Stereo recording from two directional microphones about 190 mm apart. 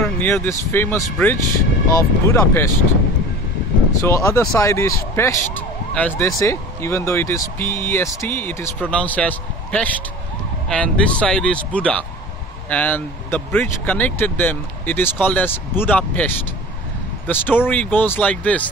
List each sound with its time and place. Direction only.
0.0 s speech: 10° left (ahead or behind)
4.0 s speech: 15° left (ahead or behind)